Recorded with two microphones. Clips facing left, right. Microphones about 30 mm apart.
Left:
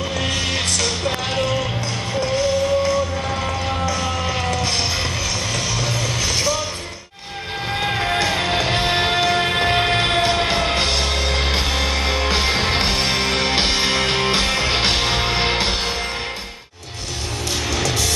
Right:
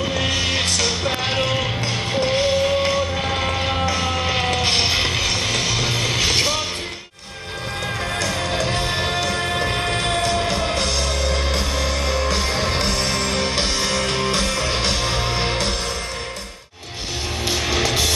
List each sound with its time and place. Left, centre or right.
0.0 s music: centre
2.1 s music: right
7.8 s music: left
17.6 s music: centre